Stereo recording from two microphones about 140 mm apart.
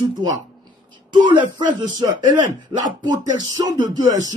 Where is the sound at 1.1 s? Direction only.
35° right (ahead or behind).